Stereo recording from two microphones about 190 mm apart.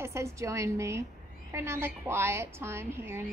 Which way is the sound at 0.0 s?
15° right (ahead or behind).